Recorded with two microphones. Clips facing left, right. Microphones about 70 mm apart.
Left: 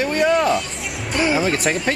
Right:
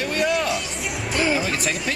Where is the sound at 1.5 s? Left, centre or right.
Left.